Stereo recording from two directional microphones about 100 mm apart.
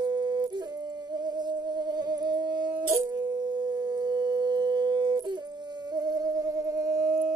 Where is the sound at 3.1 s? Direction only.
35° right (ahead or behind).